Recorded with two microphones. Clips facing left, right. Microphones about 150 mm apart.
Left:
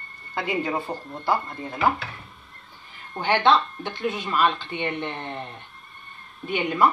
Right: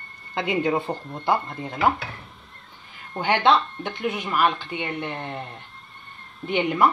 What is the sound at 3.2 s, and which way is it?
Speech, 15° right (ahead or behind).